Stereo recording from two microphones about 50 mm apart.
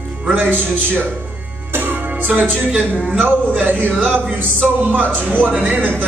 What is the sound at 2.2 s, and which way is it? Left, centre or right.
A man's voice, right.